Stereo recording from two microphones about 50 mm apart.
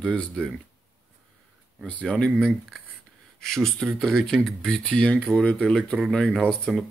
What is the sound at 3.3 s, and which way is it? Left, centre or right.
Speech, centre.